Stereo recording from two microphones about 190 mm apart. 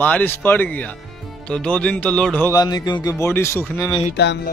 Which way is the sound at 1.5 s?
5° left (ahead or behind).